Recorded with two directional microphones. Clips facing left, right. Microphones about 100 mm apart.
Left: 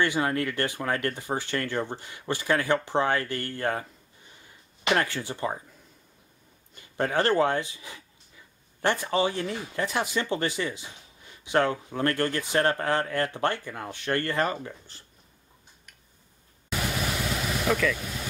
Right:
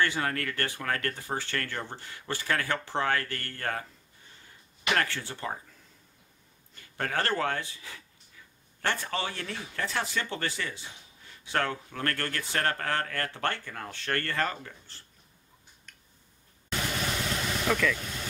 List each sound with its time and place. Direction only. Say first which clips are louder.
0.0 s speech: left 4 dB; 15° left (ahead or behind)
4.8 s speech: left 3 dB; 20° left (ahead or behind)
6.7 s speech: left 5 dB; 20° left (ahead or behind)
16.6 s vehicle: left 2 dB; 5° left (ahead or behind)